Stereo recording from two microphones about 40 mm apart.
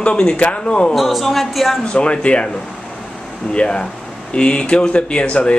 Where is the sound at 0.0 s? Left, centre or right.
Left.